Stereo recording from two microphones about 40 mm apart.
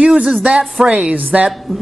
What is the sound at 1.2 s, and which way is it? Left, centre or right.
Speech, right.